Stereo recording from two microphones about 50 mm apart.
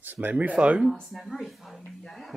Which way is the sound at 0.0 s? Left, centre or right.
Right.